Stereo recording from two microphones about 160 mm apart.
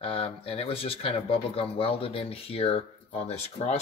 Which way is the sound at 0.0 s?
35° left (ahead or behind).